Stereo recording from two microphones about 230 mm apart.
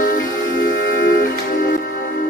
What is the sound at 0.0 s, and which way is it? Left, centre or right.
Music, left.